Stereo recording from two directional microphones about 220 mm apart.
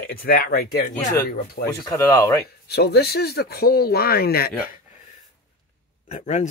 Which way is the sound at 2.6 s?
45° left (ahead or behind).